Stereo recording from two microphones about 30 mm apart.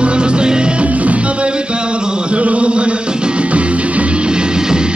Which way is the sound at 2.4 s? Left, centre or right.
Right.